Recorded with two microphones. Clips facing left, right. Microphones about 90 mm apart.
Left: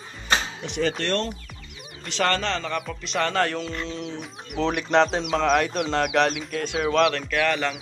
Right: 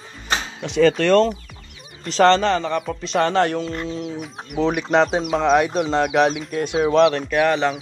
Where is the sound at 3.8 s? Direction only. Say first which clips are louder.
Right 5 dB; 10° right (ahead or behind).